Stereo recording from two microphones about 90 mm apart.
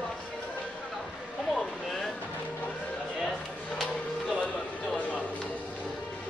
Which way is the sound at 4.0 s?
10° left (ahead or behind).